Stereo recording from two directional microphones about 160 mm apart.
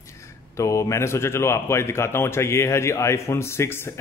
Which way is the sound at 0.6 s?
20° left (ahead or behind).